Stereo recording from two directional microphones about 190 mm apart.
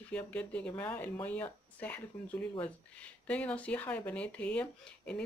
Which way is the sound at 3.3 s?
5° left (ahead or behind).